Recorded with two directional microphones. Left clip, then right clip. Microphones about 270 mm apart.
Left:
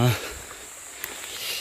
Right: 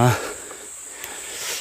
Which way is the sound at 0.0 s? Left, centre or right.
Centre.